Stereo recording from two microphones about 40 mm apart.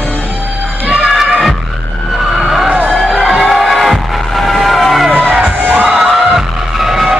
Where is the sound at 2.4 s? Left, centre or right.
Centre.